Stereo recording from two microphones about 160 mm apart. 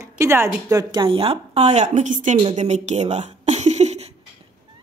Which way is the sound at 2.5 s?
45° right (ahead or behind).